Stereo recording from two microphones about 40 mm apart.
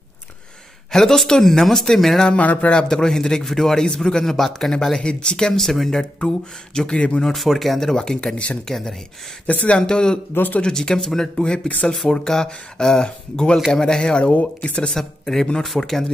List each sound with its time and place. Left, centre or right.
0.9 s a man's voice: centre
2.3 s speech: left
2.6 s a man's voice: left
5.0 s speech: centre
5.6 s a man's voice: centre
6.1 s speech: left
7.2 s speech: centre
7.9 s a man's voice: centre
9.5 s speech: left
9.8 s a man's voice: centre
14.3 s speech: left
15.0 s a man's voice: centre